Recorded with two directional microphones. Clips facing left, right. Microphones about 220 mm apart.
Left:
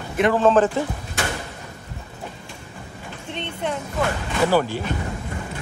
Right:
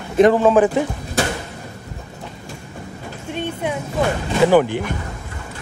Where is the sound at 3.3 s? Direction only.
10° right (ahead or behind).